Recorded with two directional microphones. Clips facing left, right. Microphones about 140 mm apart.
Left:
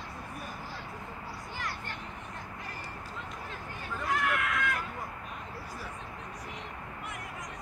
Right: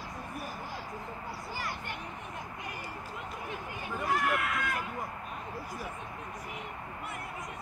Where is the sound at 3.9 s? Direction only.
5° right (ahead or behind).